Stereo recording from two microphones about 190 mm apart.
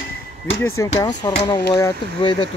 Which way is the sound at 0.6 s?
15° left (ahead or behind).